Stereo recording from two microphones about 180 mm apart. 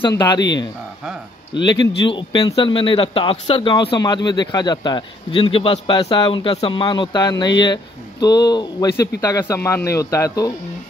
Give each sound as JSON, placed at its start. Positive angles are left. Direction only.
{"t": 0.1, "sound": "a man's voice", "side_deg": 20}
{"t": 1.7, "sound": "a man's voice", "side_deg": 25}